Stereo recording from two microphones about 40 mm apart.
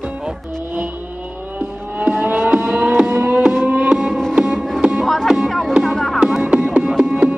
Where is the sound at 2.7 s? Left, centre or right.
Right.